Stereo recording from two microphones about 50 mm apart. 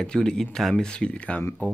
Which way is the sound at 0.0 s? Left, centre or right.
Centre.